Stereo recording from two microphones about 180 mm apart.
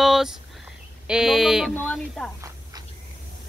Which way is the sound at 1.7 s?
5° left (ahead or behind).